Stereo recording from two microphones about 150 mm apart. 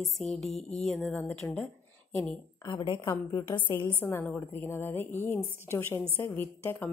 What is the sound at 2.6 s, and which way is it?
Speech, 30° left (ahead or behind).